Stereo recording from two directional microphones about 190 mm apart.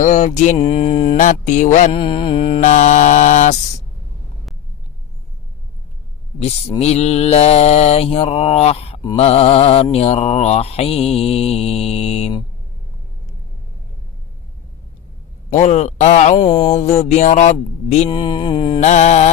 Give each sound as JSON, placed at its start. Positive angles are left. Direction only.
{"t": 0.0, "sound": "mantra", "side_deg": 40}
{"t": 1.1, "sound": "mantra", "side_deg": 40}
{"t": 6.4, "sound": "mantra", "side_deg": 35}
{"t": 15.5, "sound": "mantra", "side_deg": 35}
{"t": 16.3, "sound": "mantra", "side_deg": 25}
{"t": 18.8, "sound": "mantra", "side_deg": 40}